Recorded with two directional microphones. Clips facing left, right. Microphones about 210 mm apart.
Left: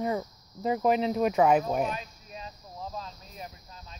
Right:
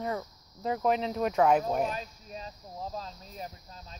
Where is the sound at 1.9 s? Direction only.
35° right (ahead or behind).